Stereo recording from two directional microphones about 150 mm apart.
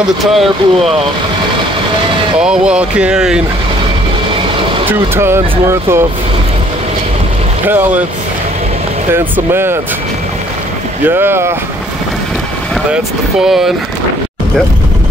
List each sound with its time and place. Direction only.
0.2 s speech: centre (ahead or behind)
2.3 s speech: 5° right (ahead or behind)
4.8 s speech: 15° right (ahead or behind)
7.6 s speech: 10° right (ahead or behind)
9.1 s speech: 15° right (ahead or behind)
11.1 s speech: 15° right (ahead or behind)
12.9 s speech: 5° right (ahead or behind)